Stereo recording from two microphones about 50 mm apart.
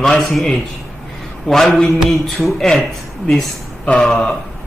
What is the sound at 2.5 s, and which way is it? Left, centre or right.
Speech, centre.